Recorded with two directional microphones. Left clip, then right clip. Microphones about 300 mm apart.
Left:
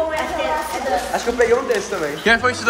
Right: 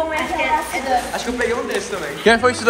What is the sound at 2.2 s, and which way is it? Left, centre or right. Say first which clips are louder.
Speech: right 3 dB; centre.